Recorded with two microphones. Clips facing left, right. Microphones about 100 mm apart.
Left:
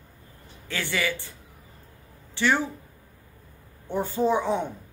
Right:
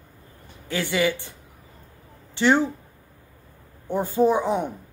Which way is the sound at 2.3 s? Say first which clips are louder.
Right 5 dB; 20° right (ahead or behind).